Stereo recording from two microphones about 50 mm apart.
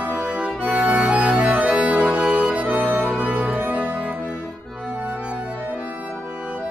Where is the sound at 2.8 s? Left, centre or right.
Right.